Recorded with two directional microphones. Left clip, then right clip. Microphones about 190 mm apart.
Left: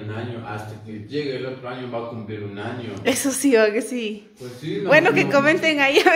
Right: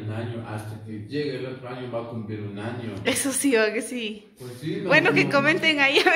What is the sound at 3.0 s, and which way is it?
A woman's voice, 25° left (ahead or behind).